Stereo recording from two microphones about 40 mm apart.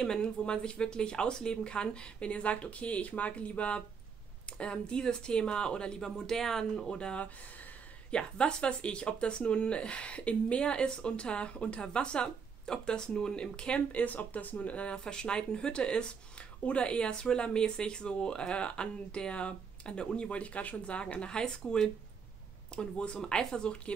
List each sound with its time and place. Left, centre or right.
0.0 s speech: left
7.0 s speech: left
13.9 s speech: left; by 23.8 s centre